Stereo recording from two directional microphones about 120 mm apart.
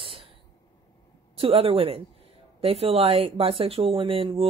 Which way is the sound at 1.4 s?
55° right (ahead or behind).